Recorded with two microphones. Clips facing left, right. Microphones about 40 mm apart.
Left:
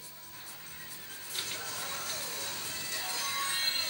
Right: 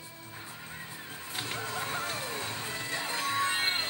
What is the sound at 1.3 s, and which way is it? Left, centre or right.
Music, right.